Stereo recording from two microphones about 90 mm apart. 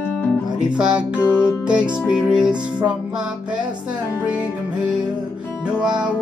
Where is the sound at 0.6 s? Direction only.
10° right (ahead or behind).